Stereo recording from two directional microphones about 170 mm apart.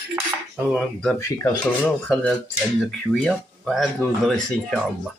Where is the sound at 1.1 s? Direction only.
15° left (ahead or behind).